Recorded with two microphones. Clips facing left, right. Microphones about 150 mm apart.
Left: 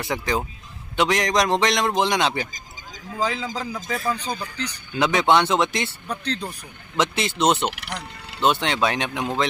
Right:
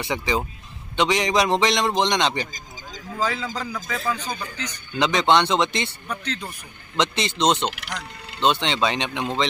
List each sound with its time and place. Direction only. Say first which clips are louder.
0.0 s a man's voice: even; centre (ahead or behind)
3.2 s a man's voice: left 1 dB; 20° left (ahead or behind); by 4.8 s 35° left (ahead or behind)
4.9 s a man's voice: even; 5° left (ahead or behind)
6.0 s speech: left 2 dB; 35° left (ahead or behind)
7.0 s a man's voice: left 1 dB; 5° left (ahead or behind)